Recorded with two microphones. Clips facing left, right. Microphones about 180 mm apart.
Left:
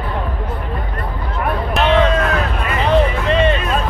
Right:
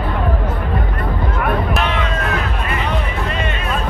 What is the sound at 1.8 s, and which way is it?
Hubbub, 35° left (ahead or behind).